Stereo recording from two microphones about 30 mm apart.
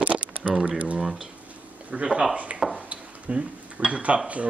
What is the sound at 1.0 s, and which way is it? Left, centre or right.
Speech, centre.